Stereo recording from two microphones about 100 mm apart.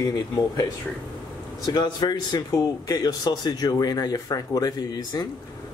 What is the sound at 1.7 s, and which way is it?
A man's voice, 45° left (ahead or behind).